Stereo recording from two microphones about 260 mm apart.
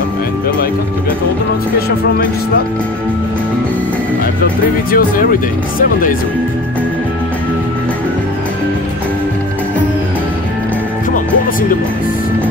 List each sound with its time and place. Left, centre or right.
4.9 s speech: left